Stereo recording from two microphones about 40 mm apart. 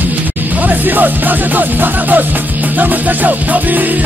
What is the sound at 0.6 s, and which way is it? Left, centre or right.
Music, right.